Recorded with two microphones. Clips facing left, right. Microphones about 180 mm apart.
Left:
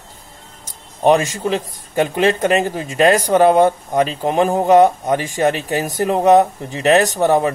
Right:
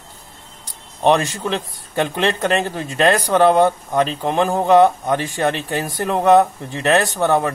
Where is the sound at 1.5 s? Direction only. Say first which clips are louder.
Left 3 dB; 10° left (ahead or behind).